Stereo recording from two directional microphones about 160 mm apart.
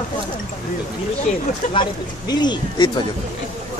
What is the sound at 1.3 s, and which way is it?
Speech, 45° left (ahead or behind).